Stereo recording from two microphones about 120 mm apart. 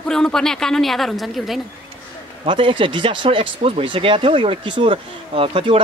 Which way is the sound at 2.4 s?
45° right (ahead or behind).